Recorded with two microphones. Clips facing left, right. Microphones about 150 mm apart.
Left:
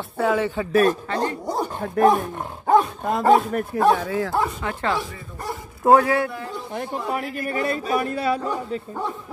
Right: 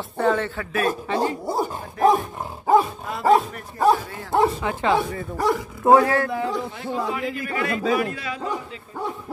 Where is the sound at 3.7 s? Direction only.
70° left (ahead or behind).